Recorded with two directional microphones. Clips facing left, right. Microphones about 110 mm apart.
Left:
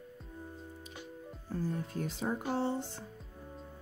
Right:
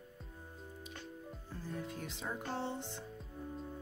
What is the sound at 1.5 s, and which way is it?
Speech, 40° left (ahead or behind).